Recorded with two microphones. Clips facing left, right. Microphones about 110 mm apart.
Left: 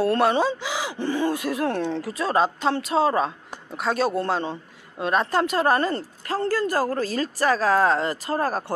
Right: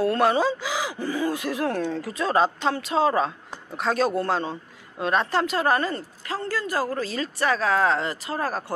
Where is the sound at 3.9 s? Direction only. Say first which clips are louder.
Even; 25° left (ahead or behind).